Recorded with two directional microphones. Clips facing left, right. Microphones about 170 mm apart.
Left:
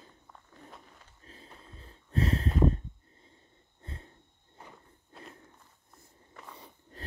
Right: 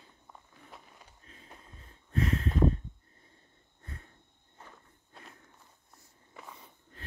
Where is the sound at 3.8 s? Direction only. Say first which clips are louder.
Left 2 dB; 25° left (ahead or behind).